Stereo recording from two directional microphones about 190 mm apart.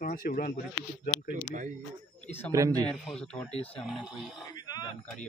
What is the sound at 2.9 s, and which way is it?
Speech, 5° left (ahead or behind).